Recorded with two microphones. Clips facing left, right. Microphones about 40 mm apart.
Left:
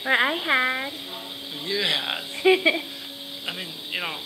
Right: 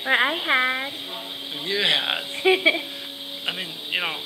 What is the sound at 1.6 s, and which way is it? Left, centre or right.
A man's voice, right.